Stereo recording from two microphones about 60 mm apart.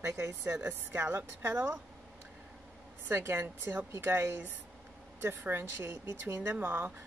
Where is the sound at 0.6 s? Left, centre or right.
Right.